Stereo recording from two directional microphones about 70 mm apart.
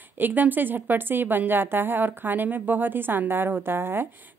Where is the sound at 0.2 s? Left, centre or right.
Right.